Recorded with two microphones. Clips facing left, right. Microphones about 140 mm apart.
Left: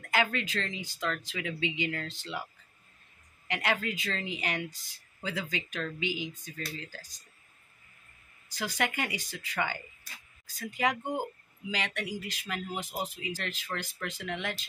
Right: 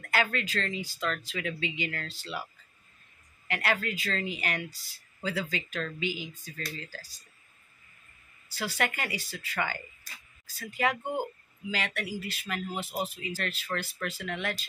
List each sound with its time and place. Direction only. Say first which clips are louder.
0.0 s speech: even; 20° left (ahead or behind)
3.4 s speech: right 1 dB; 20° left (ahead or behind)
8.5 s speech: right 1 dB; 15° left (ahead or behind)